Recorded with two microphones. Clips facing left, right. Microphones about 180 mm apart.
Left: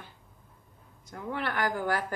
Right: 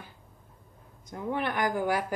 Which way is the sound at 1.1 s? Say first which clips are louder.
Right 3 dB; 20° right (ahead or behind).